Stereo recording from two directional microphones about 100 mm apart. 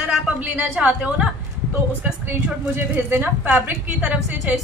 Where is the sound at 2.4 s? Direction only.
15° right (ahead or behind).